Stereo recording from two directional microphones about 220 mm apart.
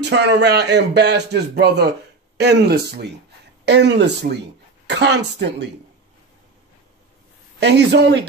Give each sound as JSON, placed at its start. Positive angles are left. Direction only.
{"t": 0.0, "sound": "speech", "side_deg": -50}
{"t": 7.6, "sound": "speech", "side_deg": -50}